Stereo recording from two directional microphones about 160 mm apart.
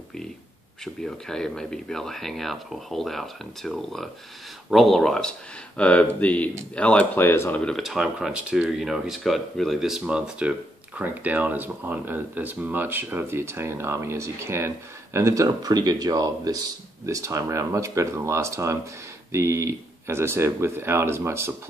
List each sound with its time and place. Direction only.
1.0 s speech: 5° left (ahead or behind); by 21.5 s 15° right (ahead or behind)